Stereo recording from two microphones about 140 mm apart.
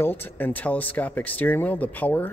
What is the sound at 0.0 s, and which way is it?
Speech, 15° left (ahead or behind).